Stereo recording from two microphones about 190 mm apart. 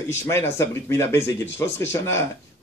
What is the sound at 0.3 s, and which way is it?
A man's voice, 15° left (ahead or behind).